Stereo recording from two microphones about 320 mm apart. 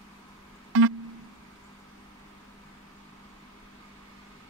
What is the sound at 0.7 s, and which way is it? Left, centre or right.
Music, right.